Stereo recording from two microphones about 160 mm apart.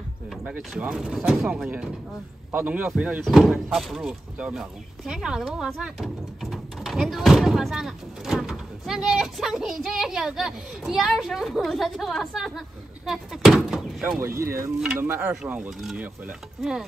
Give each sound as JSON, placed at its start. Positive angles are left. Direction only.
{"t": 0.3, "sound": "speech", "side_deg": 0}
{"t": 14.2, "sound": "speech", "side_deg": -15}